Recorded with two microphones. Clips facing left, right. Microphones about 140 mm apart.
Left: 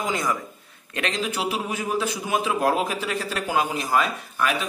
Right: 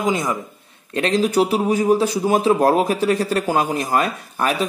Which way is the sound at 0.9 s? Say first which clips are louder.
Right 10 dB; 35° right (ahead or behind).